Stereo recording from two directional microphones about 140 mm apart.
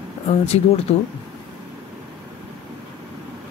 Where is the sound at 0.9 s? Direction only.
45° left (ahead or behind).